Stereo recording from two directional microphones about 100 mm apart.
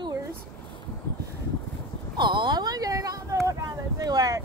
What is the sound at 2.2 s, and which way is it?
Speech, 50° right (ahead or behind).